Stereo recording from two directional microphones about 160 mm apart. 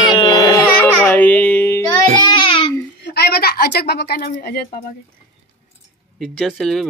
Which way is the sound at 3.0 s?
80° left.